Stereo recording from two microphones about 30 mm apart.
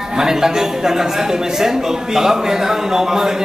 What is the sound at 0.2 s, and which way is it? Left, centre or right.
A man's voice, centre.